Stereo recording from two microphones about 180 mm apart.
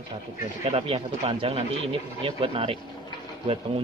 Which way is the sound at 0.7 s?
35° right (ahead or behind).